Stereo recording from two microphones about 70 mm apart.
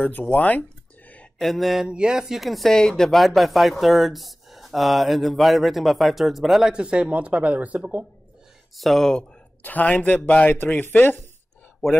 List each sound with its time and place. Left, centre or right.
0.0 s speech: left
1.4 s speech: centre
1.9 s speech: centre
6.7 s speech: centre
8.7 s speech: centre
9.6 s a man's voice: left